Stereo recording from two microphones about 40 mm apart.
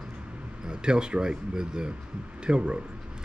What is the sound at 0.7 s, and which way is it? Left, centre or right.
Speech, right.